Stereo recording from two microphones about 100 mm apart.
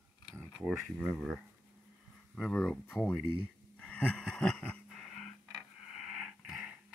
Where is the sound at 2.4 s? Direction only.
10° left (ahead or behind).